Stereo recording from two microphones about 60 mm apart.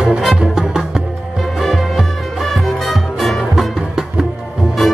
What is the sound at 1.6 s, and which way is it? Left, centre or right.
Music, centre.